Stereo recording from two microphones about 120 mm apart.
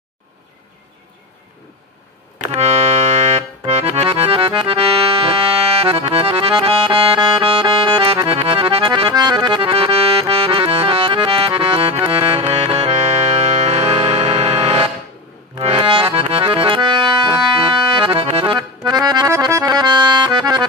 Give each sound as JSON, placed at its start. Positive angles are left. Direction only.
{"t": 2.4, "sound": "accordion", "side_deg": -65}
{"t": 12.1, "sound": "music", "side_deg": -55}
{"t": 15.6, "sound": "accordion", "side_deg": -50}
{"t": 18.8, "sound": "accordion", "side_deg": -35}